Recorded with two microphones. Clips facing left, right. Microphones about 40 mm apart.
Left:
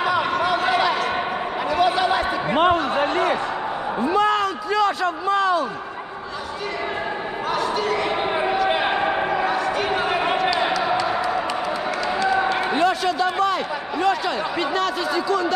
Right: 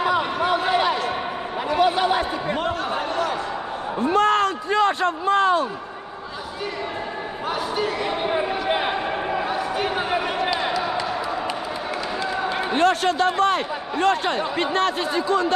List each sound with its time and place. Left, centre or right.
2.5 s speech: left
4.0 s speech: right
7.5 s speech: centre
8.9 s basketball bounce: left
9.5 s a sound: centre
12.7 s speech: right